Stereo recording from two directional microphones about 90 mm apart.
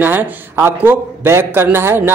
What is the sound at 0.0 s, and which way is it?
A man's voice, 20° right (ahead or behind).